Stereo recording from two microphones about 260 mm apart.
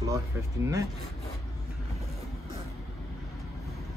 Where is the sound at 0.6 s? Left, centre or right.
Centre.